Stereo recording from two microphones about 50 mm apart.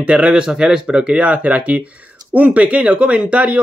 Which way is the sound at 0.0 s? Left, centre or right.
Right.